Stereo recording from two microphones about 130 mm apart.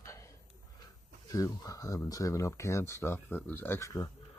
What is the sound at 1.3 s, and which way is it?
Speech, 25° left (ahead or behind).